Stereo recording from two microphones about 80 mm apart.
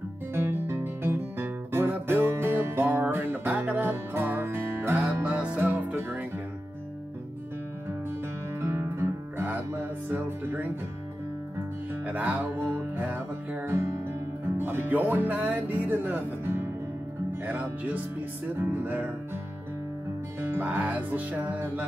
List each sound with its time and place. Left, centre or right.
0.3 s guitar: right
3.1 s music: right
8.5 s music: right
12.0 s music: centre
20.3 s music: right